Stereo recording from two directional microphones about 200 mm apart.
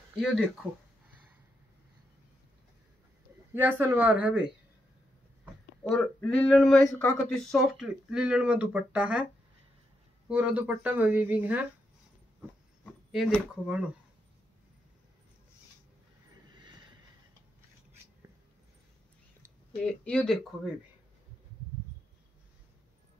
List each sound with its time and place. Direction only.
0.2 s speech: centre (ahead or behind)
3.5 s speech: 10° right (ahead or behind)
5.9 s speech: 5° left (ahead or behind)
10.2 s speech: 5° right (ahead or behind)
13.1 s speech: centre (ahead or behind)
16.4 s vehicle: 20° right (ahead or behind)
19.8 s speech: 5° left (ahead or behind)